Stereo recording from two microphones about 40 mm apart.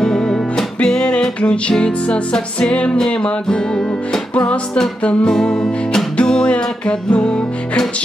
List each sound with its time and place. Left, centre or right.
0.0 s music: centre